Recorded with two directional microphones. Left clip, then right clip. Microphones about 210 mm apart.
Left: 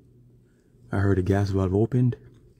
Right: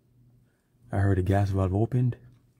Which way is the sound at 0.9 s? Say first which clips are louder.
Left 3 dB; 5° left (ahead or behind).